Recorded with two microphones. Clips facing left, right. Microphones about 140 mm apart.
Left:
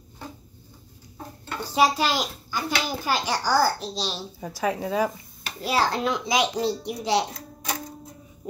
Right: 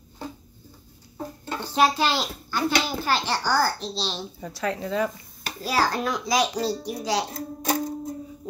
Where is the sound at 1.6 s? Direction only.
10° left (ahead or behind).